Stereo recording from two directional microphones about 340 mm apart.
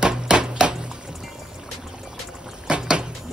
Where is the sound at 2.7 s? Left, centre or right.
Centre.